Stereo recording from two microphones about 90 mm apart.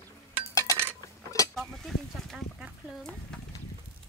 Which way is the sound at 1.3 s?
40° left (ahead or behind).